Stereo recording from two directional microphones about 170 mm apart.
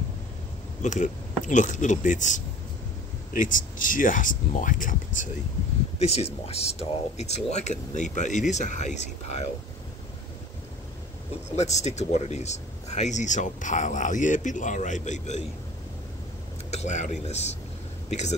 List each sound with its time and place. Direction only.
0.8 s speech: 45° left (ahead or behind)
5.9 s speech: 40° left (ahead or behind)
11.5 s speech: 40° left (ahead or behind)
16.7 s a man's voice: 45° left (ahead or behind)